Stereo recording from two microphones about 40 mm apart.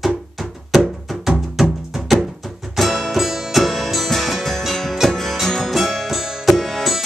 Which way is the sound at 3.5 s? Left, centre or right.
Centre.